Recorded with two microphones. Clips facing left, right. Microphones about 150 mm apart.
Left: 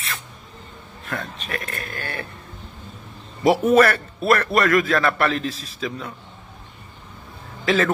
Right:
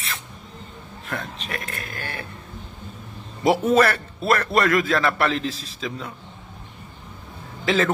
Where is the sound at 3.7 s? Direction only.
25° right (ahead or behind).